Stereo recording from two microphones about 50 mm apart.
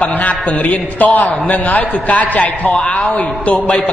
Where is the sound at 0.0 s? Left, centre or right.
Left.